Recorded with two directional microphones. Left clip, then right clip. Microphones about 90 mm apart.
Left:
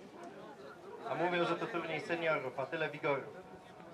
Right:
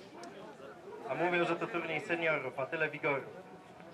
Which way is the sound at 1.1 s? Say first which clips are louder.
Right 2 dB; 10° left (ahead or behind).